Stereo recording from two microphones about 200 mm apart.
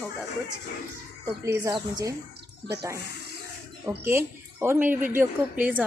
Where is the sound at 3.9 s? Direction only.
10° right (ahead or behind).